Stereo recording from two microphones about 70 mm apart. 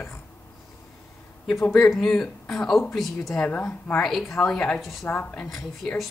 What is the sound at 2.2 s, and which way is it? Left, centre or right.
A woman's voice, centre.